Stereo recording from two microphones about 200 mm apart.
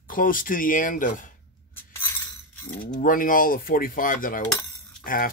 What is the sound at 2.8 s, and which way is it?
Speech, 40° left (ahead or behind).